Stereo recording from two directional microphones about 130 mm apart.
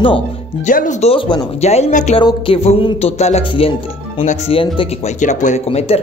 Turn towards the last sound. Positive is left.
turn(degrees=55)  # may be behind; listen again after turning